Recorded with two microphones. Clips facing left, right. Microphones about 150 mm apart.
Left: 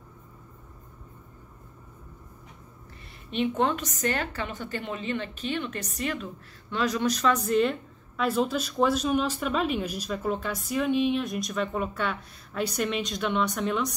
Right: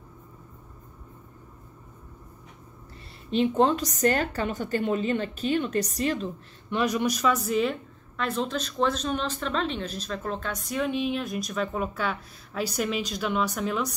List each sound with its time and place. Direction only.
3.3 s a woman's voice: 35° right (ahead or behind)
6.7 s a woman's voice: 15° right (ahead or behind)